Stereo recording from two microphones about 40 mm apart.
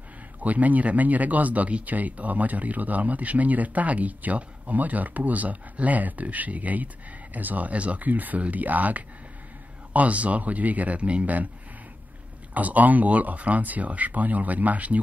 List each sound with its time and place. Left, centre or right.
0.4 s speech: right
12.5 s speech: right